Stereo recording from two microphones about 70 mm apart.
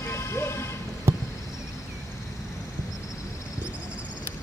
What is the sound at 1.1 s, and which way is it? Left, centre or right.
Basketball bounce, right.